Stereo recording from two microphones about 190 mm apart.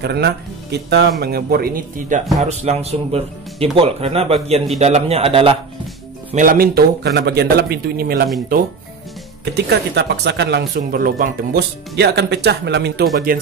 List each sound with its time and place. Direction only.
0.0 s speech: 60° right (ahead or behind); by 5.6 s 30° right (ahead or behind)
6.3 s speech: 45° right (ahead or behind)
9.4 s speech: 60° right (ahead or behind)